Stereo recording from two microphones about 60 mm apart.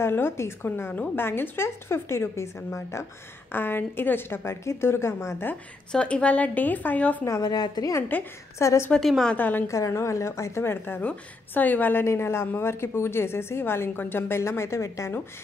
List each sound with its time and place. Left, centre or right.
0.0 s a woman's voice: left
3.5 s a woman's voice: left
4.5 s a woman's voice: left
5.9 s a woman's voice: centre
7.2 s a woman's voice: left
8.1 s a woman's voice: left
8.5 s a woman's voice: left
9.0 s a woman's voice: centre
9.3 s a woman's voice: left
9.7 s a woman's voice: left
11.0 s a woman's voice: left
12.0 s a woman's voice: left